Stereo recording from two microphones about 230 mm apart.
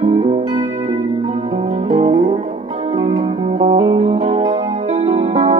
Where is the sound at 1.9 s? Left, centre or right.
Right.